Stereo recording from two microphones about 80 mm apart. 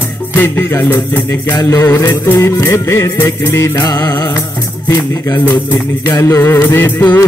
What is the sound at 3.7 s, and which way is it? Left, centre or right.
Music, left.